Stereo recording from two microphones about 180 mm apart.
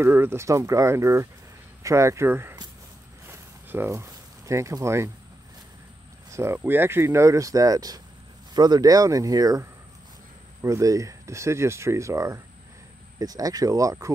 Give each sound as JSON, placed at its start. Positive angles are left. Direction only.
{"t": 0.0, "sound": "speech", "side_deg": -10}
{"t": 3.3, "sound": "a sound", "side_deg": -10}
{"t": 6.3, "sound": "speech", "side_deg": -15}